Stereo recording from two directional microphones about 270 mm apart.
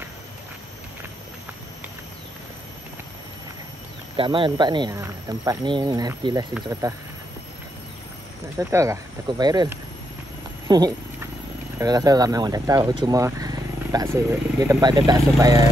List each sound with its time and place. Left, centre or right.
4.2 s speech: centre
8.5 s speech: centre
10.7 s cat: centre
11.8 s speech: centre